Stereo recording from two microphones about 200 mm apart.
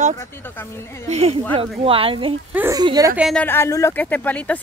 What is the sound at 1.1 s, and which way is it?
Speech, 30° right (ahead or behind).